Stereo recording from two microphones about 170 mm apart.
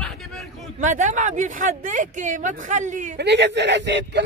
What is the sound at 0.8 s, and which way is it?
Speech, 45° right (ahead or behind).